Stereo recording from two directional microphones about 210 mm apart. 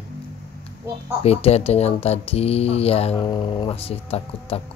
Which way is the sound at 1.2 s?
30° left (ahead or behind).